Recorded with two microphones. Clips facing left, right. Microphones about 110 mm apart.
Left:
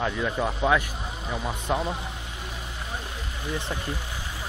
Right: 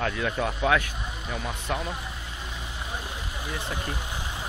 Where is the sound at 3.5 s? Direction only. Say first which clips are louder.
Left 2 dB; 15° right (ahead or behind).